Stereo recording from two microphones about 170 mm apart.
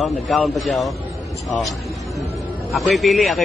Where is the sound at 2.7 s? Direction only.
Centre (ahead or behind).